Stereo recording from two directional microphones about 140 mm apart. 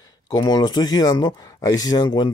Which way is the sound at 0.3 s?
30° left (ahead or behind).